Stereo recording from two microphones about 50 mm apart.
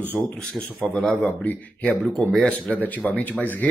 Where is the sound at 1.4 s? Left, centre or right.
Left.